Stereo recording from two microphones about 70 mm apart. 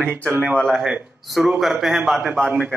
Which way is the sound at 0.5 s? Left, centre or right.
Centre.